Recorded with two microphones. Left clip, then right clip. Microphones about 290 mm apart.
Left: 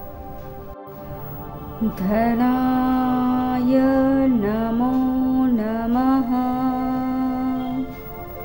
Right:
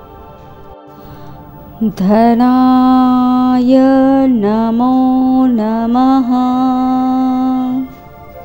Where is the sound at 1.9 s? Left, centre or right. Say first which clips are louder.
Right 11 dB; right.